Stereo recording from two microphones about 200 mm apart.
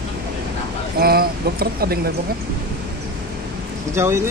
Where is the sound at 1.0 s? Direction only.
50° right (ahead or behind).